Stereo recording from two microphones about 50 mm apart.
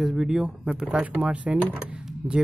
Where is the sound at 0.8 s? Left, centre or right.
Right.